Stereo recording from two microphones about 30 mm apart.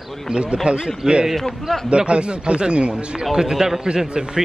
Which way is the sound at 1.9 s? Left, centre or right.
Right.